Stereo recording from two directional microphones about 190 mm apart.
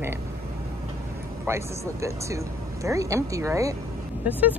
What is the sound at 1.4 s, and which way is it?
Speech, 15° right (ahead or behind).